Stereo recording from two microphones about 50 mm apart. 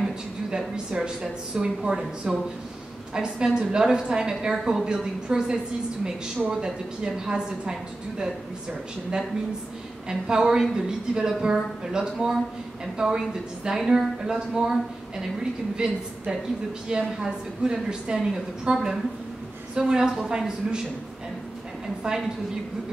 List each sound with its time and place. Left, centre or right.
0.5 s a woman's voice: centre
10.0 s a woman's voice: centre
22.0 s a woman's voice: centre